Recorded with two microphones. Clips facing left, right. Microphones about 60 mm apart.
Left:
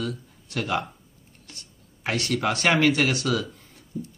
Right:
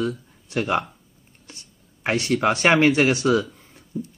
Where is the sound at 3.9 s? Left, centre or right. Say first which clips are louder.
Right 4 dB; right.